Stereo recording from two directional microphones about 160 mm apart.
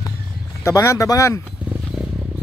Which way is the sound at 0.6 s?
20° left (ahead or behind).